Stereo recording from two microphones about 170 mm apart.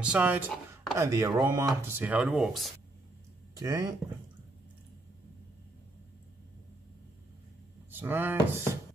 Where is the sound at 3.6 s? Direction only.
20° right (ahead or behind).